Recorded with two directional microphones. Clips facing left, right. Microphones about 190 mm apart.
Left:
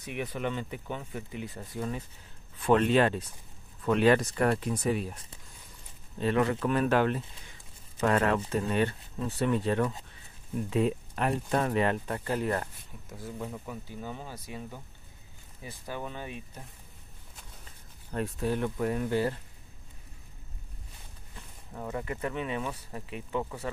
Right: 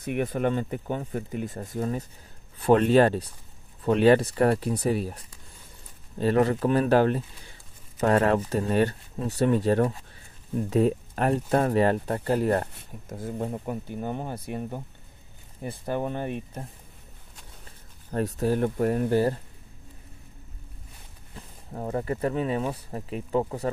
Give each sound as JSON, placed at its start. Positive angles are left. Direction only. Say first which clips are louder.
{"t": 0.0, "sound": "speech", "louder": "right 8 dB", "side_deg": -50}
{"t": 18.1, "sound": "speech", "louder": "right 5 dB", "side_deg": -40}
{"t": 21.4, "sound": "speech", "louder": "right 5 dB", "side_deg": -35}